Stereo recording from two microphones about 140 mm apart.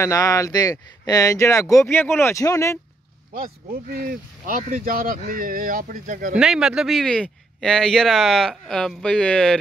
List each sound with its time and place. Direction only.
0.0 s speech: 20° left (ahead or behind)
4.0 s speech: 80° right
6.3 s speech: 5° right (ahead or behind)